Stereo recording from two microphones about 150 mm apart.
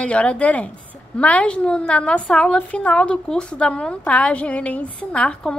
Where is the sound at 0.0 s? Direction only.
10° left (ahead or behind).